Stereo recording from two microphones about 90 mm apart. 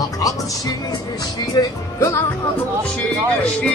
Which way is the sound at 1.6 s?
50° left (ahead or behind).